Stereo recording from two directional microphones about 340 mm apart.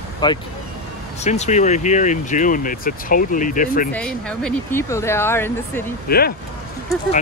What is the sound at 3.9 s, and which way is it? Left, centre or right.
Speech, centre.